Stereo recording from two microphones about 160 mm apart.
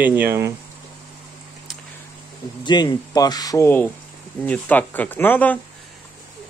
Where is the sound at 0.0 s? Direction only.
10° right (ahead or behind).